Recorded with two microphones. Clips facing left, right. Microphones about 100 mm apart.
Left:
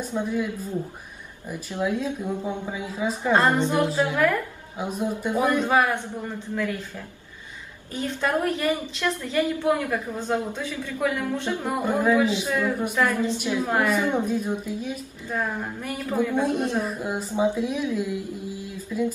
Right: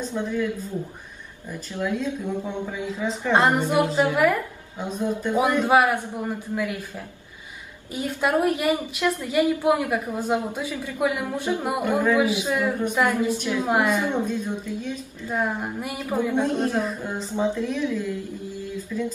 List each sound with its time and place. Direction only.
0.0 s a woman's voice: 10° left (ahead or behind)
1.5 s a woman's voice: 10° left (ahead or behind)
3.3 s a woman's voice: 15° right (ahead or behind)
4.7 s a woman's voice: 10° left (ahead or behind)
5.3 s a woman's voice: 15° right (ahead or behind)
7.9 s a woman's voice: 15° right (ahead or behind)
14.1 s a woman's voice: 10° left (ahead or behind)
15.2 s a woman's voice: 15° right (ahead or behind)
16.8 s a woman's voice: 10° left (ahead or behind)